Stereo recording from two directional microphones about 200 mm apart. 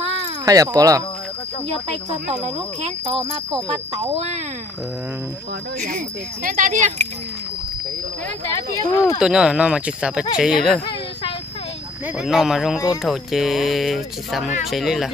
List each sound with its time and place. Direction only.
0.5 s speech: 15° right (ahead or behind)
2.4 s speech: 35° right (ahead or behind)
5.8 s speech: 45° right (ahead or behind)
8.5 s speech: 15° left (ahead or behind)
9.2 s speech: 5° right (ahead or behind)
12.2 s speech: centre (ahead or behind)